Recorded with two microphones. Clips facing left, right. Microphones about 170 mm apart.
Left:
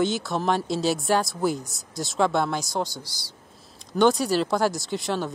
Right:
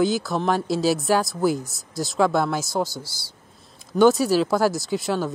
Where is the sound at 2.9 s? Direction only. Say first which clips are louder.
Right 4 dB; 15° left (ahead or behind).